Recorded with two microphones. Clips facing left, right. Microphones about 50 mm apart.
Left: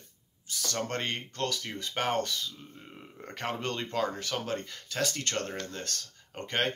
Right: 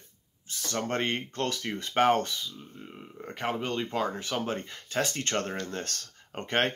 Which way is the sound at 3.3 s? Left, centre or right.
Centre.